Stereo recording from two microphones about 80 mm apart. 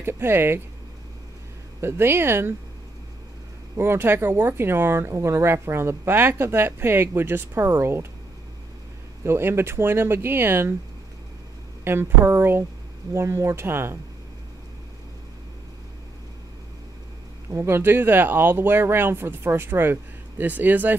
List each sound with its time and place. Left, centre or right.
0.0 s speech: right
1.8 s speech: right
3.7 s speech: right
9.2 s speech: right
11.8 s speech: right
17.5 s speech: right